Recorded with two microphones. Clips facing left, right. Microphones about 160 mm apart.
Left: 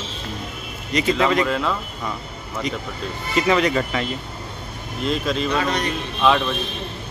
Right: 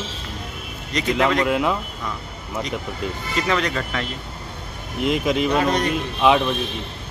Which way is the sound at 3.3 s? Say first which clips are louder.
Left 5 dB; 5° left (ahead or behind).